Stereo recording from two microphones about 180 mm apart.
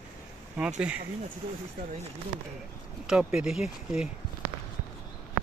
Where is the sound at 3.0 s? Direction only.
5° right (ahead or behind).